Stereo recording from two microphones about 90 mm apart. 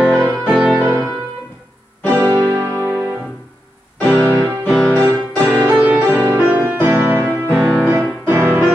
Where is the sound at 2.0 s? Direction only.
20° left (ahead or behind).